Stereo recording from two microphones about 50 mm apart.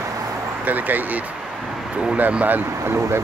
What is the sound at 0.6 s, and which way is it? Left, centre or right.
Speech, right.